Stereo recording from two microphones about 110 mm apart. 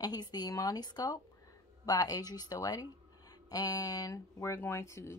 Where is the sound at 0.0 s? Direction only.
35° left (ahead or behind).